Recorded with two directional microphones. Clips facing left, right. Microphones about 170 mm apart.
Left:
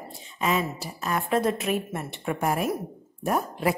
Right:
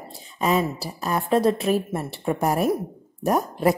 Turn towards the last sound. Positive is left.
turn(degrees=-40)  # may be behind; listen again after turning